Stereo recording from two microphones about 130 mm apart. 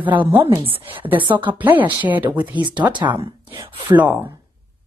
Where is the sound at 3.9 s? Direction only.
10° right (ahead or behind).